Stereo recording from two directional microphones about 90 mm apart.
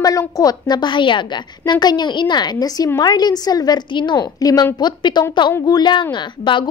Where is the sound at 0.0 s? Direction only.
45° left (ahead or behind).